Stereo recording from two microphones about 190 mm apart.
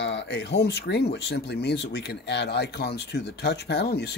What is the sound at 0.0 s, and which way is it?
Speech, 65° left (ahead or behind).